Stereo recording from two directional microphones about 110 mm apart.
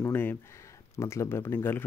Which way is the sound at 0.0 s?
20° left (ahead or behind).